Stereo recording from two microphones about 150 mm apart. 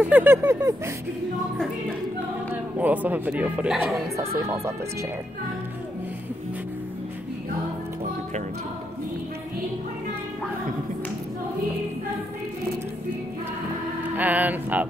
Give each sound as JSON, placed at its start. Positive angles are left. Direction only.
{"t": 0.0, "sound": "speech", "side_deg": -10}
{"t": 2.5, "sound": "speech", "side_deg": -10}
{"t": 14.1, "sound": "speech", "side_deg": -10}